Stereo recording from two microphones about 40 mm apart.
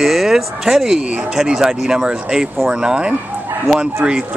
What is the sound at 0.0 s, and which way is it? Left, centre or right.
Speech, centre.